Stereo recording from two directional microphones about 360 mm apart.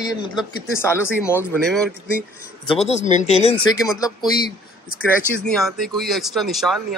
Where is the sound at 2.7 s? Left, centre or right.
Centre.